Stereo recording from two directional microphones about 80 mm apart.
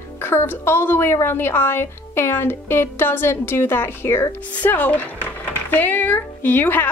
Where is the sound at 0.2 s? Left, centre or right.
Left.